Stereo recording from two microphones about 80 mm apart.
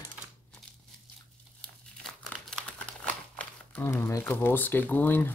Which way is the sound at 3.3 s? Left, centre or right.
Left.